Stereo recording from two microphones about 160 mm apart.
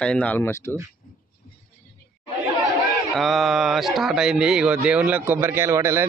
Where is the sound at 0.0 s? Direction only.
5° left (ahead or behind).